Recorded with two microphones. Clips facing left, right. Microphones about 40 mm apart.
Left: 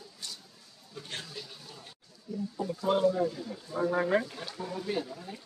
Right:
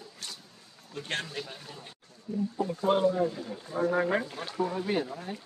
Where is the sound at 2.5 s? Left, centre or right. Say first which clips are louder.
Right 2 dB; right.